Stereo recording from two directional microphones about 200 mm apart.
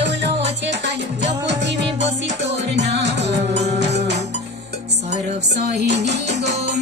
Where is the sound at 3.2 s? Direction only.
35° right (ahead or behind).